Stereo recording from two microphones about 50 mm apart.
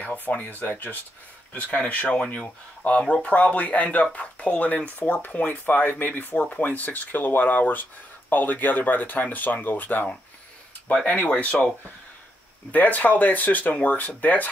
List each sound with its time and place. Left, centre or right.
0.0 s speech: left
11.1 s speech: left
12.7 s speech: left